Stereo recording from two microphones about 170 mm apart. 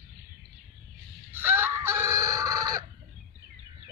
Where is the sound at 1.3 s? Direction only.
10° right (ahead or behind).